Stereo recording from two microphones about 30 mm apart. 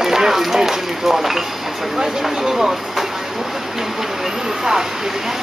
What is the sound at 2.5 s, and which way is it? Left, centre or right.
Speech, centre.